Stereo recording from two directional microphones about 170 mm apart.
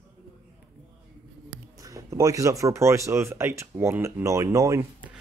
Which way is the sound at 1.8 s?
20° right (ahead or behind).